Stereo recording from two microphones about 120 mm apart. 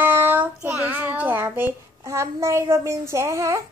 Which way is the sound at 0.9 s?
15° right (ahead or behind).